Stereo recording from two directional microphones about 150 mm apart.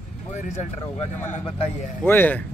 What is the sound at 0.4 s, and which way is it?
Speech, 50° left (ahead or behind).